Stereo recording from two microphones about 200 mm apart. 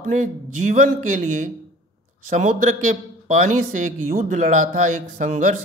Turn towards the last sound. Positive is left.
turn(degrees=-40)  # may be behind; listen again after turning